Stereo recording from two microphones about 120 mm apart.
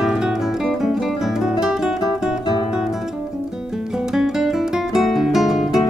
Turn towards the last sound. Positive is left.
turn(degrees=-5)  # may be behind; listen again after turning